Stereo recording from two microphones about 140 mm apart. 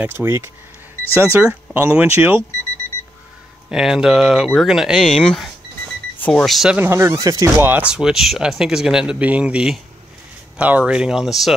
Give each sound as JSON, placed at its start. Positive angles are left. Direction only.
{"t": 0.0, "sound": "speech", "side_deg": -15}
{"t": 3.7, "sound": "speech", "side_deg": -5}
{"t": 6.8, "sound": "speech", "side_deg": -20}